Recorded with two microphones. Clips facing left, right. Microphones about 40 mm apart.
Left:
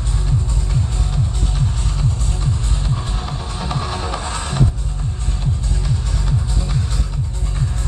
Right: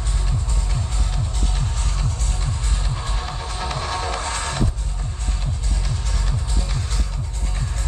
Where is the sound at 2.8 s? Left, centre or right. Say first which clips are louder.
Left 3 dB; centre.